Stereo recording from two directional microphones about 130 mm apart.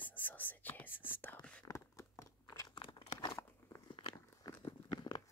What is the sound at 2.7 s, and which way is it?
Crumpling, 40° left (ahead or behind).